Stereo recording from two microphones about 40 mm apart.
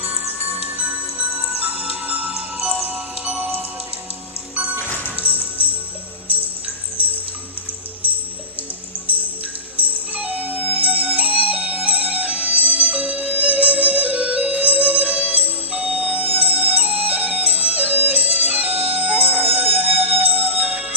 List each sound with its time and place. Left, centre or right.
1.6 s music: right
4.8 s music: left
5.1 s music: right
9.8 s music: right